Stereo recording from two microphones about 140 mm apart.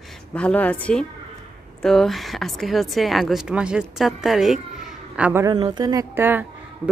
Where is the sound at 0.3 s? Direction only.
10° left (ahead or behind); by 5.4 s 10° right (ahead or behind).